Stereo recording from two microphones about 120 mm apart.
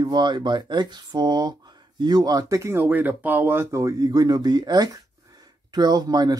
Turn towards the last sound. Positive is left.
turn(degrees=-35)  # may be behind; listen again after turning